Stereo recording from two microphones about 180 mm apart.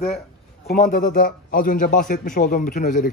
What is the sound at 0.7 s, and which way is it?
A man's voice, 50° left (ahead or behind).